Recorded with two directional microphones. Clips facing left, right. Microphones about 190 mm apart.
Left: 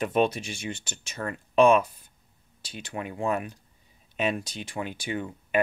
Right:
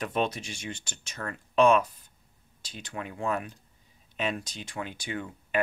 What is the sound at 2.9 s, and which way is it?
Speech, 15° left (ahead or behind).